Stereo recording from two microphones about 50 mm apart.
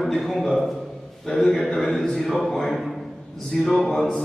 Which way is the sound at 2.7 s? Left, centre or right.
Centre.